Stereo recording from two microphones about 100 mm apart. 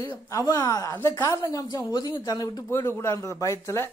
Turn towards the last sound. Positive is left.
turn(degrees=30)  # may be behind; listen again after turning